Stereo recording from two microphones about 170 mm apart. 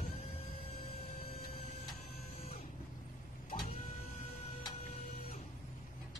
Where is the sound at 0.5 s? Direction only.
35° left (ahead or behind).